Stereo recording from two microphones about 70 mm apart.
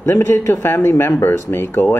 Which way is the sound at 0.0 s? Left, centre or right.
Left.